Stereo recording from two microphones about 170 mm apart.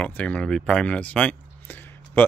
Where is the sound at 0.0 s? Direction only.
10° left (ahead or behind).